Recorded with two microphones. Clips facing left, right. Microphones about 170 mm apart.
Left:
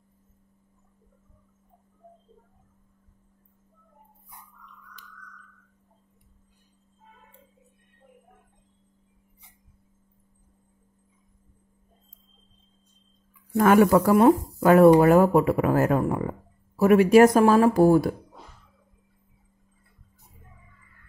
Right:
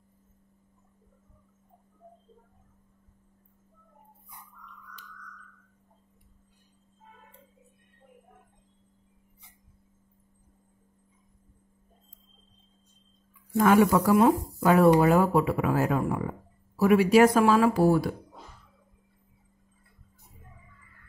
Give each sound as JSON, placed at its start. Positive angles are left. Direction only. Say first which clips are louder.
{"t": 13.6, "sound": "speech", "louder": "left 3 dB", "side_deg": 50}